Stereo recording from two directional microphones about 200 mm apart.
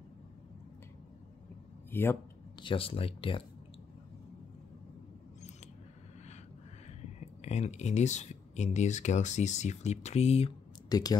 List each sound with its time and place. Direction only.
1.9 s a man's voice: 10° left (ahead or behind)
2.6 s speech: 25° left (ahead or behind)
7.2 s speech: 35° left (ahead or behind)
10.9 s speech: 20° left (ahead or behind)